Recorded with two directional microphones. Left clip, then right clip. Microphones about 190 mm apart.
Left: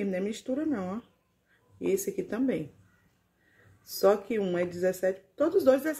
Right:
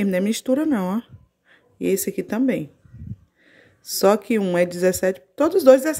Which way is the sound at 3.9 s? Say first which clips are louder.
Right 7 dB; 40° right (ahead or behind).